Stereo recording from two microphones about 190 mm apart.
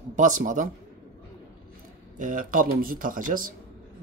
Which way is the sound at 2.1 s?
45° right (ahead or behind).